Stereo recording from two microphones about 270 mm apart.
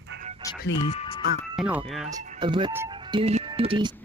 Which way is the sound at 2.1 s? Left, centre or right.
Centre.